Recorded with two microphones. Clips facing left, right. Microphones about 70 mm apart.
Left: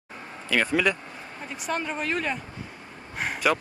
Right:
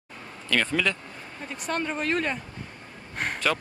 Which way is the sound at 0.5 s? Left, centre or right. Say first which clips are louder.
Left 2 dB; centre.